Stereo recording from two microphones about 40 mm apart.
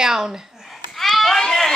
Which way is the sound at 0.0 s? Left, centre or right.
Centre.